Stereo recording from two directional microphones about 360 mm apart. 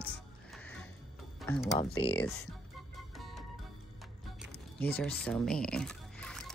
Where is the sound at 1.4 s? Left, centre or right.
Centre.